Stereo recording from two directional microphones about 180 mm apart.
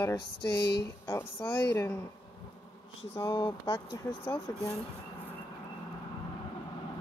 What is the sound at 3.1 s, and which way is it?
Speech, 25° left (ahead or behind).